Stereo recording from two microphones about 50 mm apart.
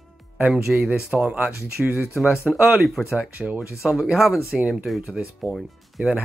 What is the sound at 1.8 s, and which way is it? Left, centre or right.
Speech, centre.